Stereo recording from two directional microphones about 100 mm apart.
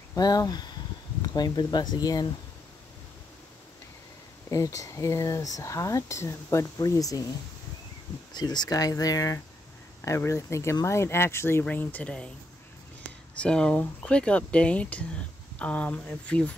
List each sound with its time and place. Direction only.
0.1 s speech: 40° left (ahead or behind)
4.5 s speech: 35° left (ahead or behind)
8.3 s speech: 45° left (ahead or behind); by 12.3 s 10° left (ahead or behind)
13.4 s speech: 10° left (ahead or behind)